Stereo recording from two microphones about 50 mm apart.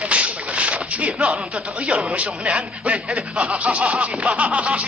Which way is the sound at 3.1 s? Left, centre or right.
Centre.